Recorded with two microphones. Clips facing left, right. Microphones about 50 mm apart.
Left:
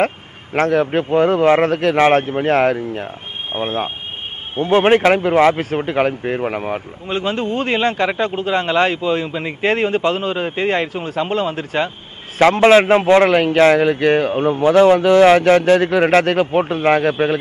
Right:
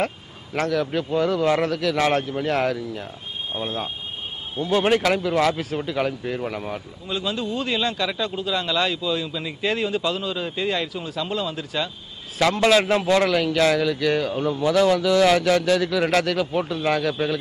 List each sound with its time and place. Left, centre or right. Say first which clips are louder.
0.0 s speech: left 7 dB; left